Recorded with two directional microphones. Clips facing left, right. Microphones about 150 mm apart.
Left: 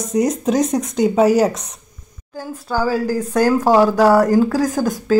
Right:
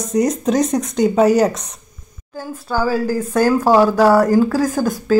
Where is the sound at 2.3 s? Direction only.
15° left (ahead or behind).